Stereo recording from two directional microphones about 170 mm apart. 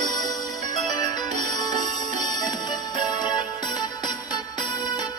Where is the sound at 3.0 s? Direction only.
25° left (ahead or behind).